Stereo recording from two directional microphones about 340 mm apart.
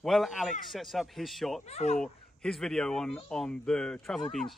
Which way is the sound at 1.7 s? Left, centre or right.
Centre.